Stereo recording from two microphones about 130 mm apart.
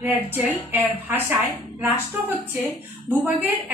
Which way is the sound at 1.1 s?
15° right (ahead or behind).